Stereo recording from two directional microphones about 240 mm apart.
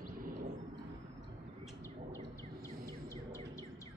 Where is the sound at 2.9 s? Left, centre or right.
Centre.